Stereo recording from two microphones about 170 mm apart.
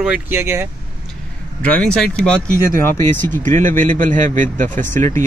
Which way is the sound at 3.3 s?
50° right (ahead or behind).